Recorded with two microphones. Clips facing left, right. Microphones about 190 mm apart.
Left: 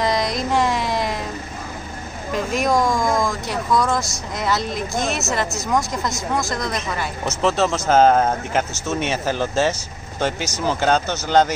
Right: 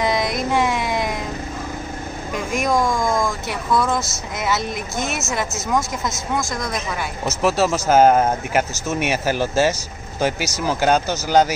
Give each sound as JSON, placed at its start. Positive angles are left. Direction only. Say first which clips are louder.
{"t": 0.0, "sound": "child singing", "louder": "even", "side_deg": -5}
{"t": 0.5, "sound": "music", "louder": "left 1 dB", "side_deg": 0}
{"t": 2.3, "sound": "a woman's voice", "louder": "left 1 dB", "side_deg": 0}